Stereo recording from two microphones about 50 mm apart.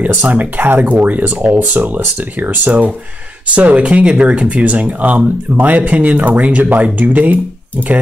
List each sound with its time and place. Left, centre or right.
0.1 s speech: right